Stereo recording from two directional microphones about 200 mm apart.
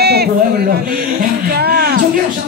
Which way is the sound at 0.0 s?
50° right (ahead or behind).